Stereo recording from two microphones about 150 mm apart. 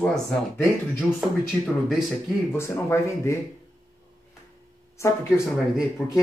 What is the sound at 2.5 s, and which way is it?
Speech, 15° left (ahead or behind).